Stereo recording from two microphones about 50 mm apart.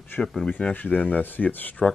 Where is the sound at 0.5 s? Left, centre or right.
Left.